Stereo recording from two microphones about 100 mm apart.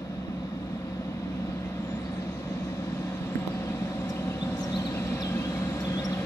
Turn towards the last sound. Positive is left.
turn(degrees=35)  # may be behind; listen again after turning